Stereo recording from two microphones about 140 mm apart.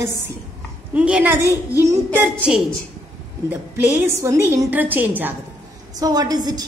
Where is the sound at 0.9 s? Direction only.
10° right (ahead or behind).